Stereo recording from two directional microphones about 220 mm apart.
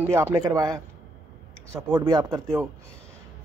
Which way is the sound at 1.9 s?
20° right (ahead or behind).